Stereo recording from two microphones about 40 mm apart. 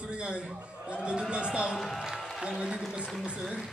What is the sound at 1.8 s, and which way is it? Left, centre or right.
Speech, centre.